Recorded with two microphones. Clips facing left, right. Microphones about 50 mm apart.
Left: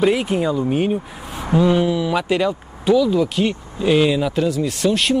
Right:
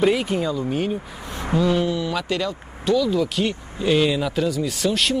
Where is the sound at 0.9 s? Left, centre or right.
Centre.